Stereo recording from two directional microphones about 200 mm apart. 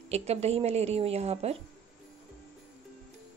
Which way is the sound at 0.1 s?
30° right (ahead or behind).